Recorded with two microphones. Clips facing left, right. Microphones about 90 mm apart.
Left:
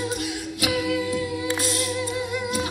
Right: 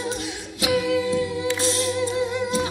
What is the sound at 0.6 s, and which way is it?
Music, 30° right (ahead or behind).